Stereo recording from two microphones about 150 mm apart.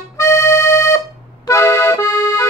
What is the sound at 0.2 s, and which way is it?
Accordion, 20° left (ahead or behind).